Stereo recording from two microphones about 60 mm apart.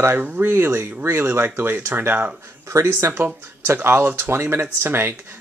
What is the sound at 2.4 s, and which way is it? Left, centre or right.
Speech, right.